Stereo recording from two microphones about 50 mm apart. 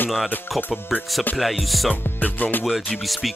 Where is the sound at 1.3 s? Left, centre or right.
Centre.